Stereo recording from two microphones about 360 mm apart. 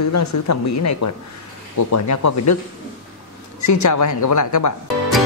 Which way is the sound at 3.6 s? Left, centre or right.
Left.